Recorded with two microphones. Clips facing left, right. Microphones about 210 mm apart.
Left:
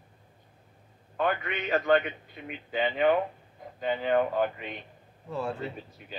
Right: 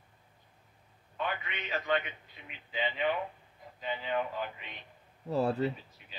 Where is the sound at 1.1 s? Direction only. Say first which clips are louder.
Left 8 dB; 55° left (ahead or behind).